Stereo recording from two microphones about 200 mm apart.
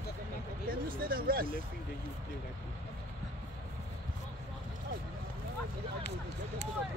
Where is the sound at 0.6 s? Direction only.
45° right (ahead or behind).